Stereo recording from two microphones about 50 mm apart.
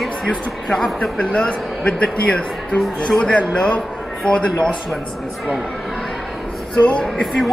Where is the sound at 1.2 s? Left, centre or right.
Left.